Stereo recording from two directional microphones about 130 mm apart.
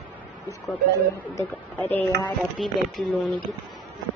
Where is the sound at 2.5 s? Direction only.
Centre (ahead or behind).